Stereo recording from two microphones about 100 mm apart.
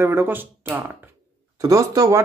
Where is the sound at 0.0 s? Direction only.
25° right (ahead or behind).